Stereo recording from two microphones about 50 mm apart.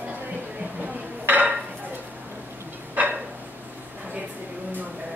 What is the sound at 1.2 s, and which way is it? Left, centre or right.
Dishes, right.